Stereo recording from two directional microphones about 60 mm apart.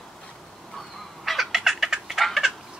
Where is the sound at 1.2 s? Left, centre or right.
Centre.